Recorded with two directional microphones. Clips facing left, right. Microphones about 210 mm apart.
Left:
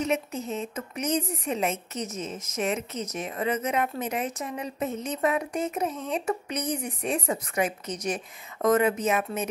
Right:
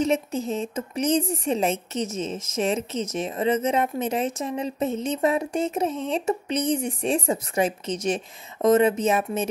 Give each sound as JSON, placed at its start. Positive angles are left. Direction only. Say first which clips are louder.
{"t": 0.0, "sound": "speech", "louder": "right 5 dB", "side_deg": -30}